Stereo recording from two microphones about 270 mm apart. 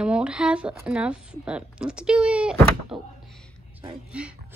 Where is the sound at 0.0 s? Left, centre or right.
Centre.